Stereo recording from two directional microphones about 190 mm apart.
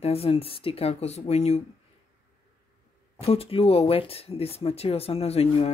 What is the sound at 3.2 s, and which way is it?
Speech, 30° left (ahead or behind).